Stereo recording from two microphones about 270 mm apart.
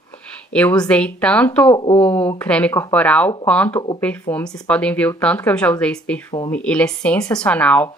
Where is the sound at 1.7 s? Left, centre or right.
Centre.